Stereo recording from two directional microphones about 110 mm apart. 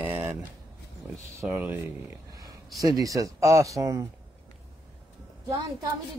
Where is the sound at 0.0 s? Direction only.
20° right (ahead or behind).